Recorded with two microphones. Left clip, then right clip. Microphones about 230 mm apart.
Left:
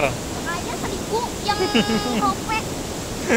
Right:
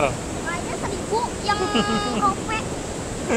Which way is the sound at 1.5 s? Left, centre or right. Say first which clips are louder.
Left 1 dB; centre.